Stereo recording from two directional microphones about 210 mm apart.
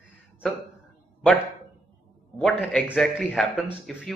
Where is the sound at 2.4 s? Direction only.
Centre (ahead or behind).